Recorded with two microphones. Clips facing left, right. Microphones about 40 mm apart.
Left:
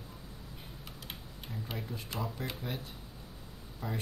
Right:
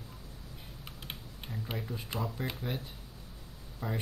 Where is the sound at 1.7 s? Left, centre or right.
Centre.